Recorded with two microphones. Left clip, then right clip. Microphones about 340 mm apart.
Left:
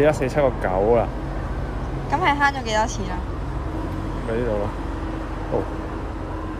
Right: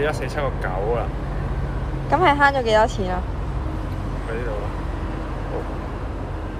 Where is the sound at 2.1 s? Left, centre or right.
Centre.